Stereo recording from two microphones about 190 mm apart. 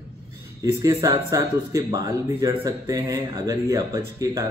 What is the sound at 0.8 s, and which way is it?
Speech, 15° right (ahead or behind).